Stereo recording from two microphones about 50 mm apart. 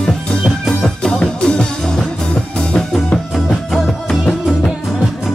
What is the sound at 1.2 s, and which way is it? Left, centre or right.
Music, left.